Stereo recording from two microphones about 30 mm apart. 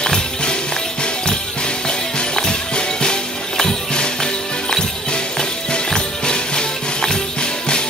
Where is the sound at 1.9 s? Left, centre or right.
Left.